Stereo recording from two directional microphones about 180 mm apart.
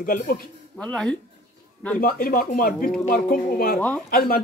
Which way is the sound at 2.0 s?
55° left (ahead or behind).